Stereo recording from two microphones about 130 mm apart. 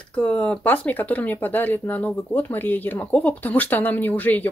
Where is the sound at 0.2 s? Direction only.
10° left (ahead or behind).